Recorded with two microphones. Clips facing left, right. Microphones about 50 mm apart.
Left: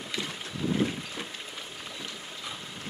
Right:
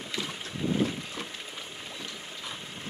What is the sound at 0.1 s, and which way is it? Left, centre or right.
Boat, centre.